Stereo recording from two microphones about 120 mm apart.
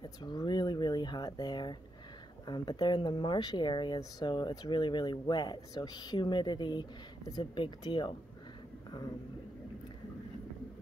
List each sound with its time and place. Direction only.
0.0 s speech: 35° left (ahead or behind)